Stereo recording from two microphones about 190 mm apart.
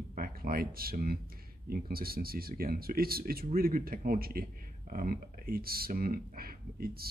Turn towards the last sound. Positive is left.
turn(degrees=-50)  # may be behind; listen again after turning